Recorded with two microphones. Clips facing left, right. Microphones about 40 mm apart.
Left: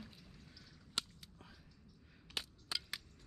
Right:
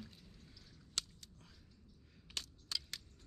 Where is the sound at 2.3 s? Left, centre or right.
Centre.